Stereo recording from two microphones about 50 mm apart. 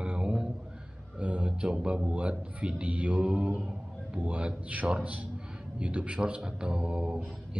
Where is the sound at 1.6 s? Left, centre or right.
Centre.